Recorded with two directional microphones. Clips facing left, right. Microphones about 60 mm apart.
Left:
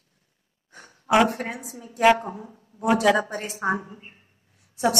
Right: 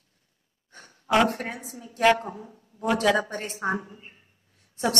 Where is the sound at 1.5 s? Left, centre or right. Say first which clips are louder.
Left 2 dB; left.